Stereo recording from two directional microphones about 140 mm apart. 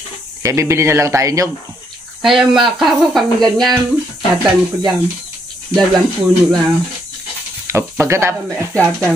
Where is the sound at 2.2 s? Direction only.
Centre (ahead or behind).